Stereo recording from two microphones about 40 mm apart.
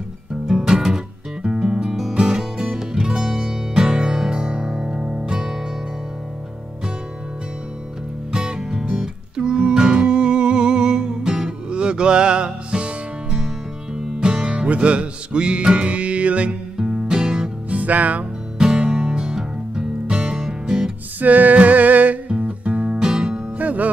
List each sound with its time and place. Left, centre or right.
0.5 s music: centre
8.3 s music: centre
16.7 s music: centre
17.6 s music: right
18.8 s music: centre
21.2 s music: right
22.4 s music: right
22.9 s music: centre
23.6 s music: right